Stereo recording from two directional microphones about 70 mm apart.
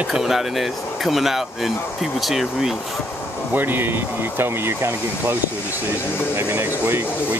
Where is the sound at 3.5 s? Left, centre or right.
Right.